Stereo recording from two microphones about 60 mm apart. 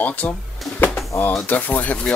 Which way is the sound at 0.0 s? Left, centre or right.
Left.